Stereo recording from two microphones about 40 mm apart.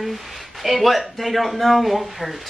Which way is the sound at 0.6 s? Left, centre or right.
Centre.